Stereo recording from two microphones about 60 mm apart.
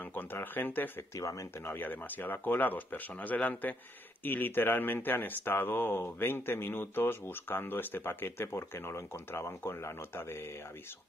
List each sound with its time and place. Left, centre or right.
0.0 s speech: left
1.1 s speech: left
1.6 s speech: left